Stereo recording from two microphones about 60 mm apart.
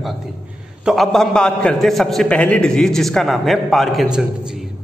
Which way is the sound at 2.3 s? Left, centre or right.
Left.